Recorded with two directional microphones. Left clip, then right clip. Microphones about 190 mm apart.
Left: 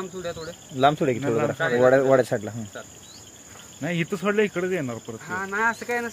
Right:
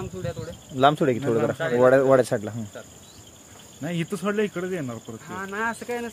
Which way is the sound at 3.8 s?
15° left (ahead or behind).